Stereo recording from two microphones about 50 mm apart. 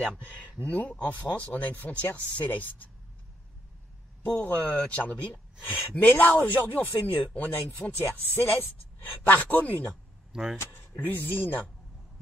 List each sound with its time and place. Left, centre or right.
0.0 s speech: left
4.2 s speech: left
10.3 s speech: centre
10.6 s speech: left